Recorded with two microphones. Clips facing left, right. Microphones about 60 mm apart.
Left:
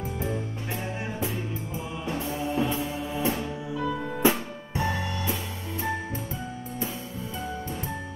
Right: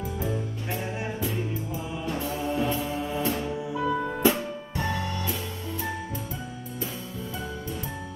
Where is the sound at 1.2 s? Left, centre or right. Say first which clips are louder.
Right 1 dB; left.